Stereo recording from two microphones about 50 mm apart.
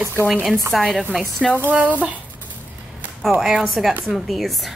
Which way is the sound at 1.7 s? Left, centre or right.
Right.